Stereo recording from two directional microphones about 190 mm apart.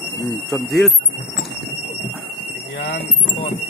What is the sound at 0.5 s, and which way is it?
Speech, centre (ahead or behind).